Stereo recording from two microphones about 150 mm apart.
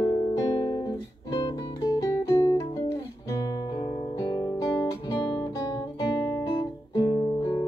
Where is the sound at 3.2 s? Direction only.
25° left (ahead or behind).